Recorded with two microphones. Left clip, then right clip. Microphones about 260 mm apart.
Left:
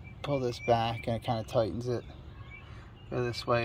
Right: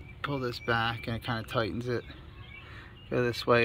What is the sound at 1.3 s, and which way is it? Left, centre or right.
Speech, centre.